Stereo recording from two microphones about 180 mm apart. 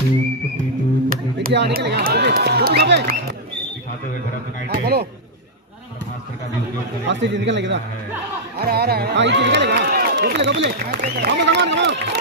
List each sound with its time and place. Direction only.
1.0 s a sound: 55° right (ahead or behind)
4.6 s speech: 65° right (ahead or behind)
7.1 s a man's voice: 85° right
8.5 s speech: 60° right (ahead or behind)